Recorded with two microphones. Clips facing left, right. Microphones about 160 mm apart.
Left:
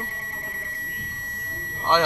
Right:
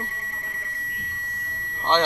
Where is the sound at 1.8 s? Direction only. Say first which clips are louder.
Even; 10° left (ahead or behind).